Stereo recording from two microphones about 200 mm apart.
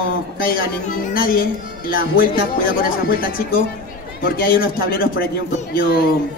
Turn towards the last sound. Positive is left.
turn(degrees=45)  # may be behind; listen again after turning